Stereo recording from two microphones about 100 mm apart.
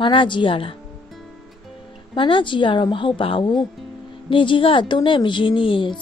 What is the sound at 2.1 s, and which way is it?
A woman's voice, 55° left (ahead or behind).